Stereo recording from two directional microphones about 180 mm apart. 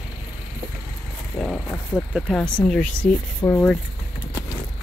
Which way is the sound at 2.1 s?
5° left (ahead or behind).